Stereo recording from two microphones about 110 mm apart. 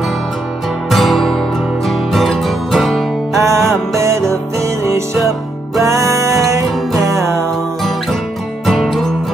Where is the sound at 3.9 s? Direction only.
25° right (ahead or behind).